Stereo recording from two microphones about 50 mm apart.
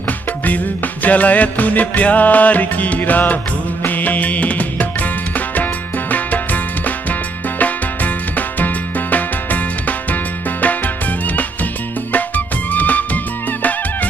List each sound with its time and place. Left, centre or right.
1.0 s music: left
12.1 s music: left